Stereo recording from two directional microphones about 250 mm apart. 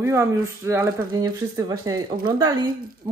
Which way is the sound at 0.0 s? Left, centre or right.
Centre.